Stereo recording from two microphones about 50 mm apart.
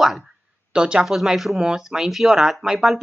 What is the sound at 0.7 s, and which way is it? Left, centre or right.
Speech, centre.